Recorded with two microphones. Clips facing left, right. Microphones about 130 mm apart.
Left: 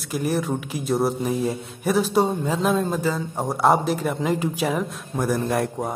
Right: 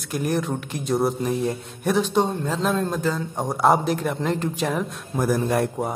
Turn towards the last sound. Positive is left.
turn(degrees=0)  # may be behind; listen again after turning